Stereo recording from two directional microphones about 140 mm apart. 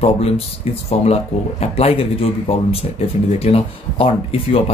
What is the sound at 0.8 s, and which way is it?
Speech, 50° left (ahead or behind).